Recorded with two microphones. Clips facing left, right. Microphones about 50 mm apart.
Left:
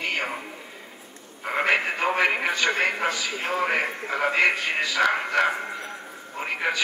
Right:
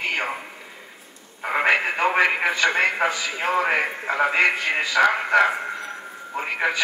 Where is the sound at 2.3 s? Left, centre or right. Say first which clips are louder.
Right 3 dB; centre.